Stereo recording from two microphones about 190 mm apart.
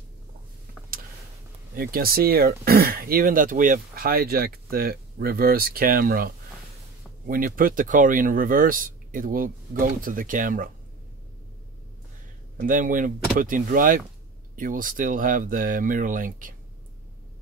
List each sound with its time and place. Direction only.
1.8 s speech: 50° right (ahead or behind)
12.5 s speech: 45° right (ahead or behind)